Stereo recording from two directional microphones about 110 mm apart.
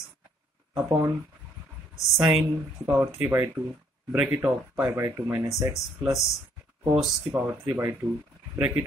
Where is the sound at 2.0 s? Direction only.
Centre (ahead or behind).